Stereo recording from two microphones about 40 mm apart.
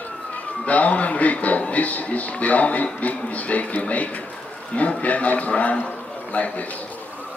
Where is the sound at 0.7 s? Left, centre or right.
Left.